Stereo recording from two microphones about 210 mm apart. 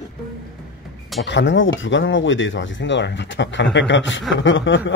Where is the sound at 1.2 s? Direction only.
60° left (ahead or behind).